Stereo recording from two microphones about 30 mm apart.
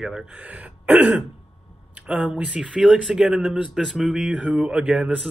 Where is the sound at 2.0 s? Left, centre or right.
Right.